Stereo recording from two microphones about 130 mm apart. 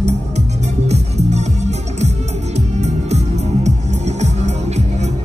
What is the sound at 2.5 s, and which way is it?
Music, 60° right (ahead or behind).